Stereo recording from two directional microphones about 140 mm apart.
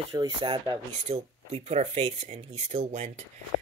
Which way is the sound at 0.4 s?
30° right (ahead or behind).